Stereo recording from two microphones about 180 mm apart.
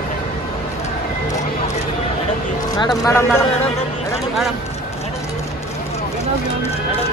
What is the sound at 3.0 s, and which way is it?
Speech, 15° left (ahead or behind).